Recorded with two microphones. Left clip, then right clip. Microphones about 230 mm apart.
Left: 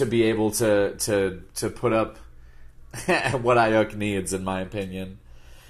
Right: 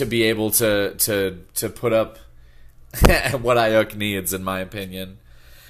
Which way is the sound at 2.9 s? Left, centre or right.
Right.